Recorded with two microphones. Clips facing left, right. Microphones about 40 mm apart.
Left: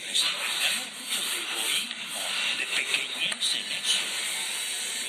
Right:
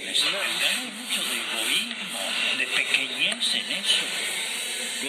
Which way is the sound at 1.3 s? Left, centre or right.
Centre.